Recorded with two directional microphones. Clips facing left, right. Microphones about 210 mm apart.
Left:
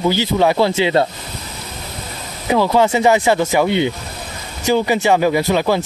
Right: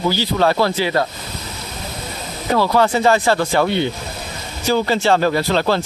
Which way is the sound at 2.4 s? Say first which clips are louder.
Left 2 dB; 15° left (ahead or behind).